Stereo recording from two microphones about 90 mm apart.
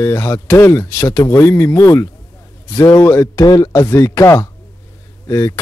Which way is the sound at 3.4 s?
40° left (ahead or behind).